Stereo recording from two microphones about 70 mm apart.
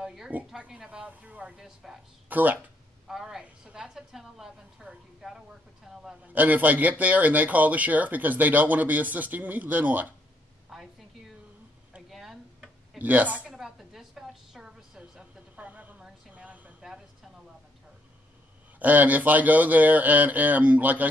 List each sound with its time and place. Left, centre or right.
0.0 s a sound: centre
0.6 s a woman's voice: centre
1.6 s a woman's voice: centre
2.2 s speech: right
3.1 s a woman's voice: centre
6.2 s speech: right
10.7 s a sound: centre
13.0 s speech: right
13.5 s a woman's voice: centre; by 16.7 s right
16.8 s a sound: centre
18.8 s speech: right